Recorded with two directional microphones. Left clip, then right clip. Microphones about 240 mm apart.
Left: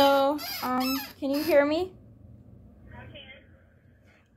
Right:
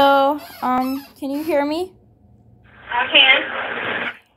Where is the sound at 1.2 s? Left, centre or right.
Centre.